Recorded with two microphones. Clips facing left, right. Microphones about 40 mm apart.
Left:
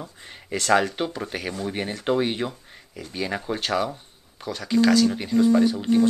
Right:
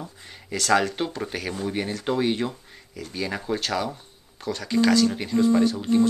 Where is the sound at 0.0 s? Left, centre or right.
Centre.